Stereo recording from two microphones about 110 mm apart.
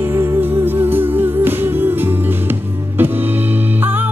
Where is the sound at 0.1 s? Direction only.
20° right (ahead or behind).